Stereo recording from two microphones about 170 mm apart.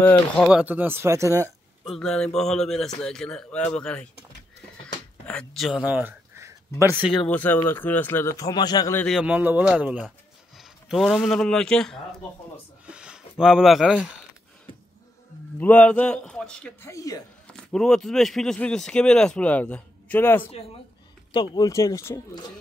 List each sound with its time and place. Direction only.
0.0 s speech: 10° left (ahead or behind)
0.5 s speech: 5° right (ahead or behind)
1.9 s speech: 5° left (ahead or behind)
5.2 s speech: 5° left (ahead or behind)
7.2 s speech: 10° left (ahead or behind)
8.9 s speech: 5° left (ahead or behind)
9.2 s speech: 10° right (ahead or behind)
12.8 s a sound: 5° right (ahead or behind)
15.6 s speech: 10° left (ahead or behind)
16.9 s speech: 20° left (ahead or behind)
17.5 s speech: 5° left (ahead or behind)
21.3 s speech: 25° left (ahead or behind)